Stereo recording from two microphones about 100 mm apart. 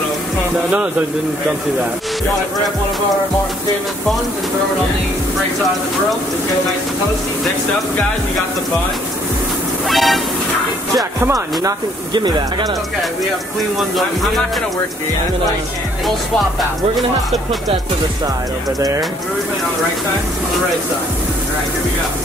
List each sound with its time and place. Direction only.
9.8 s speech: centre (ahead or behind)
11.2 s speech: 35° right (ahead or behind)
12.1 s speech: 50° right (ahead or behind)
13.7 s speech: centre (ahead or behind)